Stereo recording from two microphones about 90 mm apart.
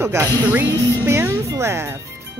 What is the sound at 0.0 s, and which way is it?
Music, 30° right (ahead or behind).